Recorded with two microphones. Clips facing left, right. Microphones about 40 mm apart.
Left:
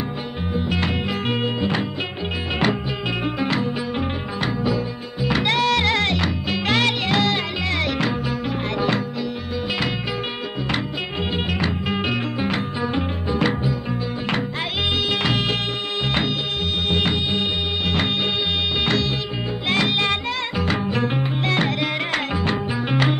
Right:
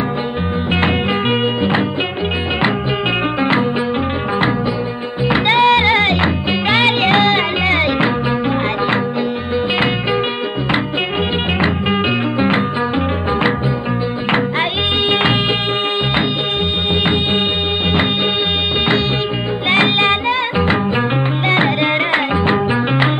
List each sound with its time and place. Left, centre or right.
1.6 s music: right
3.3 s music: right
5.3 s music: right
11.6 s music: right
17.0 s music: right
19.7 s music: right